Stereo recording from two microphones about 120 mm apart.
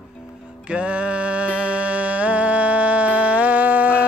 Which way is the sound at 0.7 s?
10° right (ahead or behind).